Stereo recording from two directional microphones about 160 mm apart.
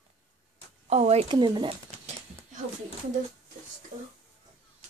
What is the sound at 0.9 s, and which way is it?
Speech, 40° right (ahead or behind).